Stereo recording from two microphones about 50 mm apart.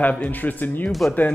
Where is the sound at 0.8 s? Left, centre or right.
Centre.